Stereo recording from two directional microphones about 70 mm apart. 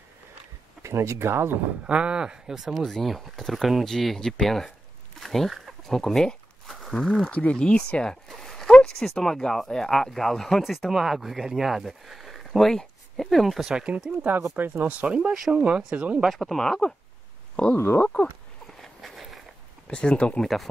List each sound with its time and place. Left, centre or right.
0.8 s speech: right
1.9 s speech: centre
5.2 s a sound: centre
7.2 s speech: centre
13.7 s speech: centre
16.3 s speech: centre
17.7 s speech: left
18.8 s a sound: centre
19.9 s speech: centre